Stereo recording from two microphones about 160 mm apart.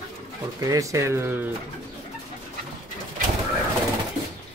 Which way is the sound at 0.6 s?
20° right (ahead or behind).